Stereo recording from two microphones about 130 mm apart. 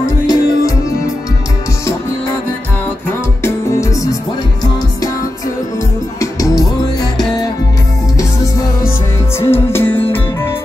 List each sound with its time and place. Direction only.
0.3 s music: 25° left (ahead or behind)
3.1 s music: 20° left (ahead or behind)
6.4 s music: 30° left (ahead or behind)
9.4 s music: 20° left (ahead or behind)